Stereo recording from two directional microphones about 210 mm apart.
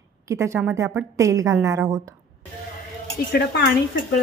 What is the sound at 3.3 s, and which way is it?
Speech, 50° left (ahead or behind).